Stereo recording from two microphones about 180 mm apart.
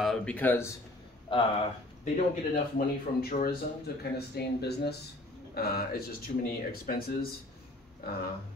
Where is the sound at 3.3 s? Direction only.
60° left (ahead or behind).